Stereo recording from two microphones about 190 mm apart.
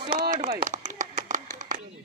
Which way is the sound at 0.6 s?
40° right (ahead or behind).